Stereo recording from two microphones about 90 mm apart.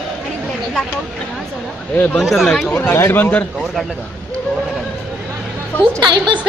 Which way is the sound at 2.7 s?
20° left (ahead or behind).